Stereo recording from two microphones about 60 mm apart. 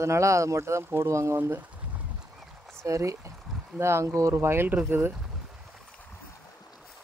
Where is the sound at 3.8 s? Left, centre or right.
Right.